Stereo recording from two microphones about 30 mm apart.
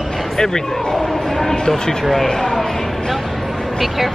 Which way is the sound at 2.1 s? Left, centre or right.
Centre.